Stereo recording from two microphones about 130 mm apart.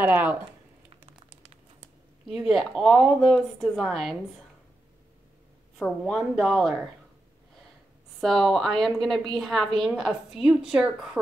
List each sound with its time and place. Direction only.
0.0 s speech: 15° right (ahead or behind)
2.2 s a woman's voice: centre (ahead or behind)
5.8 s a woman's voice: centre (ahead or behind)
8.2 s a woman's voice: centre (ahead or behind)